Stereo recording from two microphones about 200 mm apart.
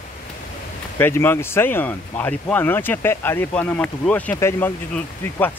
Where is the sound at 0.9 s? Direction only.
10° left (ahead or behind).